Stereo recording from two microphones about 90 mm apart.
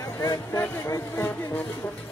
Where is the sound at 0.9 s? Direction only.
25° left (ahead or behind).